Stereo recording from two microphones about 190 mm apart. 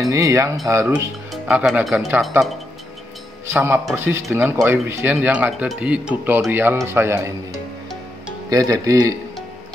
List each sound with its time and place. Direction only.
0.1 s speech: 15° right (ahead or behind)
3.5 s speech: 10° right (ahead or behind)
8.5 s speech: 15° right (ahead or behind)